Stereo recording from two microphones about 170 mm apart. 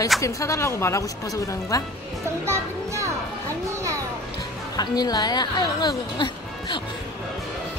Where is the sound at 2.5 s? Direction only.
15° right (ahead or behind).